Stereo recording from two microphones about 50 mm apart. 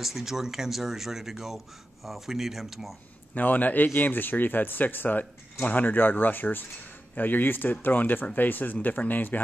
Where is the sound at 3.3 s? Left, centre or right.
Left.